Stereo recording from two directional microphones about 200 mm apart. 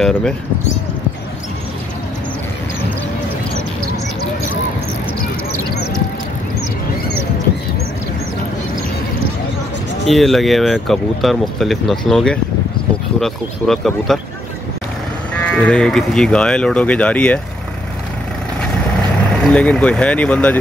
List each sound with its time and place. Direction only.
0.0 s speech: 5° left (ahead or behind)
10.0 s speech: centre (ahead or behind)
15.3 s speech: 5° left (ahead or behind)
19.4 s speech: 5° left (ahead or behind)